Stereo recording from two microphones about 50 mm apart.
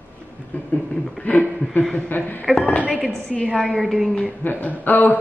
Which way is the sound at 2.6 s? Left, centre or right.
Left.